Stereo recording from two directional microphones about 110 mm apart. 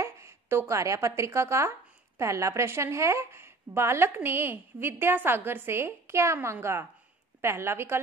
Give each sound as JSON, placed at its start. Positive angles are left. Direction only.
{"t": 0.0, "sound": "a woman's voice", "side_deg": -25}